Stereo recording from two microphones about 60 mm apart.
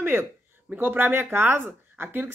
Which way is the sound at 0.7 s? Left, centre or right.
Right.